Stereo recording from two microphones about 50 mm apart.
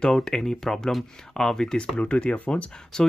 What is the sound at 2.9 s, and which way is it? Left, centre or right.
Speech, centre.